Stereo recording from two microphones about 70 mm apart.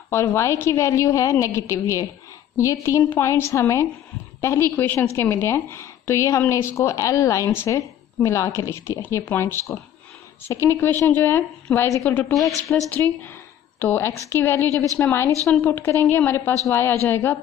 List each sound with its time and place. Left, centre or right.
0.1 s a woman's voice: left
3.1 s a woman's voice: left